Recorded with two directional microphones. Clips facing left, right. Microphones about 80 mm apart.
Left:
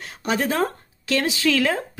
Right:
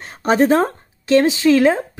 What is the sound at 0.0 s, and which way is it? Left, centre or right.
Speech, right.